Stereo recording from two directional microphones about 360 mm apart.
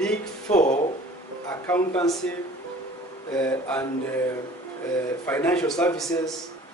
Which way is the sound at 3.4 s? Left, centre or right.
Centre.